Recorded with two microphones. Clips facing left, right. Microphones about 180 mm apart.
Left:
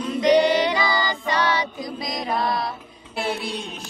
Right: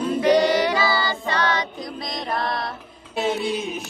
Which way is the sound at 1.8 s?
Centre (ahead or behind).